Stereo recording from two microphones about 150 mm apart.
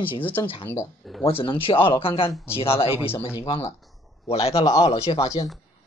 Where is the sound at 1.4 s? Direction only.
35° left (ahead or behind).